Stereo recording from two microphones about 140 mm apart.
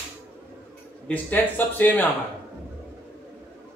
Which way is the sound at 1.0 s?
10° left (ahead or behind).